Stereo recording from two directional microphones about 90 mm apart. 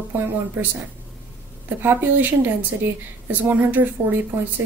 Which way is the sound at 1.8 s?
20° right (ahead or behind).